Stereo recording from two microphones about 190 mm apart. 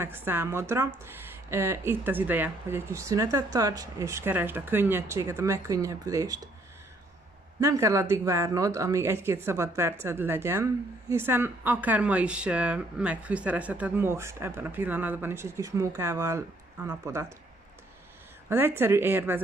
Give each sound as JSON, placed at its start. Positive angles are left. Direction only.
{"t": 0.0, "sound": "speech", "side_deg": -10}
{"t": 7.6, "sound": "speech", "side_deg": -15}
{"t": 18.5, "sound": "speech", "side_deg": -10}